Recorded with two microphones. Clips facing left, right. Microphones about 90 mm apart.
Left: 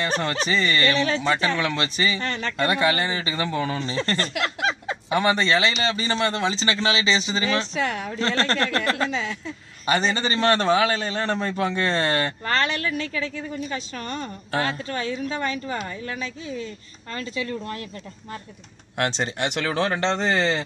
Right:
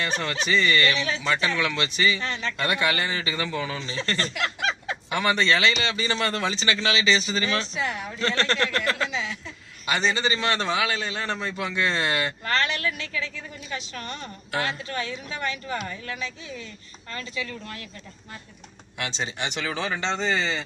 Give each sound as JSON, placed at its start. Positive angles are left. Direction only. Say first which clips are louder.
{"t": 0.0, "sound": "a man's voice", "louder": "left 3 dB", "side_deg": 35}
{"t": 1.2, "sound": "a man's voice", "louder": "left 3 dB", "side_deg": 30}
{"t": 1.5, "sound": "a man's voice", "louder": "left 2 dB", "side_deg": 40}
{"t": 2.2, "sound": "a woman's voice", "louder": "left 2 dB", "side_deg": 50}
{"t": 2.5, "sound": "a man's voice", "louder": "left 4 dB", "side_deg": 30}
{"t": 3.5, "sound": "a man's voice", "louder": "left 4 dB", "side_deg": 40}
{"t": 4.6, "sound": "fowl", "louder": "left 3 dB", "side_deg": 30}
{"t": 5.7, "sound": "a man's voice", "louder": "left 1 dB", "side_deg": 35}
{"t": 7.8, "sound": "a woman's voice", "louder": "left 3 dB", "side_deg": 50}
{"t": 8.1, "sound": "a man's voice", "louder": "left 2 dB", "side_deg": 35}
{"t": 18.9, "sound": "speech", "louder": "left 6 dB", "side_deg": 60}